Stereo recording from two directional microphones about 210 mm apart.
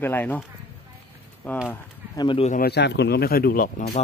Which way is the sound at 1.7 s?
20° left (ahead or behind).